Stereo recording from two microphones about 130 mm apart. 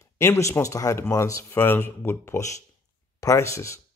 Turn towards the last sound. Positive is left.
turn(degrees=25)  # may be behind; listen again after turning